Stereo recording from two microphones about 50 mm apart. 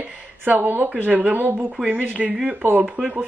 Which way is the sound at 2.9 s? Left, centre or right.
Centre.